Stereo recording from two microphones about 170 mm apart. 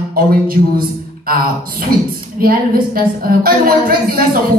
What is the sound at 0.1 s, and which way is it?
Speech, 60° right (ahead or behind).